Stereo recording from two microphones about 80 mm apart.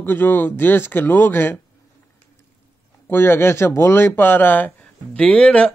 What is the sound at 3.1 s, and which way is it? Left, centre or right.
Speech, left.